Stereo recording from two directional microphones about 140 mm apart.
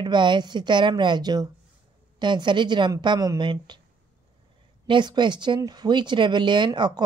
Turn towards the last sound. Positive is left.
turn(degrees=-35)  # may be behind; listen again after turning